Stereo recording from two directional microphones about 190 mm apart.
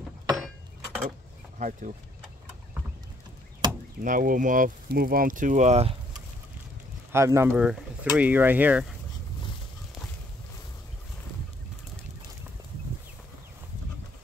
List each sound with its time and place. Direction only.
1.6 s speech: 40° right (ahead or behind)
3.6 s chop: 25° right (ahead or behind)
4.0 s speech: 45° right (ahead or behind)
7.1 s speech: 15° right (ahead or behind)